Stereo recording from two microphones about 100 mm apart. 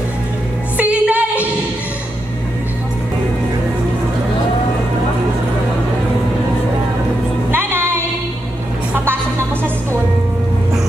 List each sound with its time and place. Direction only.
0.7 s music: 15° right (ahead or behind)
7.5 s music: 20° right (ahead or behind)